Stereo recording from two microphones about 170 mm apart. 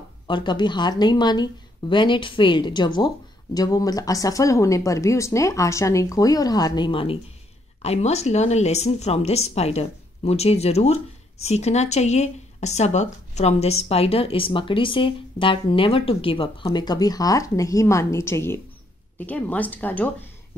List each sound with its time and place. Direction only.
0.3 s speech: 25° left (ahead or behind); by 20.2 s 10° left (ahead or behind)